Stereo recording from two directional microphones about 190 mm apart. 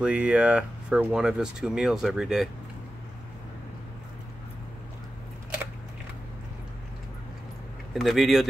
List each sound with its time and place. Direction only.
0.0 s speech: 5° right (ahead or behind)
7.9 s speech: centre (ahead or behind)